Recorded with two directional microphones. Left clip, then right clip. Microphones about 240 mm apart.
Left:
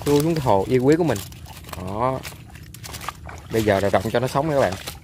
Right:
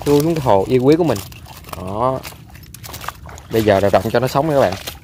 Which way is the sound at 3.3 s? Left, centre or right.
Centre.